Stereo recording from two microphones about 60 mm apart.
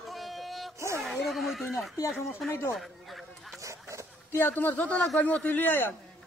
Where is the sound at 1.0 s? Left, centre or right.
Centre.